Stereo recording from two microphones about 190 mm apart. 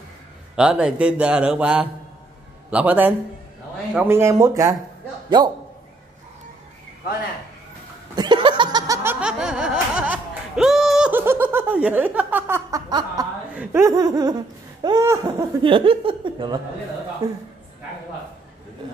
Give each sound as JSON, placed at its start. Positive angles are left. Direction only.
{"t": 0.6, "sound": "speech", "side_deg": -5}
{"t": 8.2, "sound": "laughter", "side_deg": -25}
{"t": 13.6, "sound": "speech", "side_deg": -15}